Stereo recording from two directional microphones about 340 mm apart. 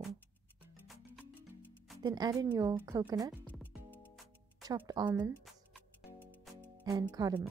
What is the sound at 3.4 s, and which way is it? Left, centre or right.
Music, centre.